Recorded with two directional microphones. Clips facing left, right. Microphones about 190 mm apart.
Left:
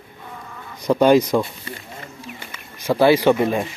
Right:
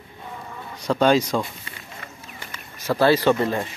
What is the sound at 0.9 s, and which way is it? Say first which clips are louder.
Speech: left 4 dB; 15° left (ahead or behind).